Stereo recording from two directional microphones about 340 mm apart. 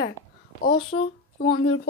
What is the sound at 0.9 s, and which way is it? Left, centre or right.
Speech, centre.